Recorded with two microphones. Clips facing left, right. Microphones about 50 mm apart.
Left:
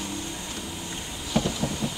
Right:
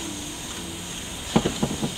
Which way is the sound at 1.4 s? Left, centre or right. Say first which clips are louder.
Right 4 dB; right.